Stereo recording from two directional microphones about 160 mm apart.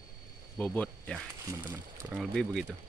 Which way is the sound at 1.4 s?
15° right (ahead or behind).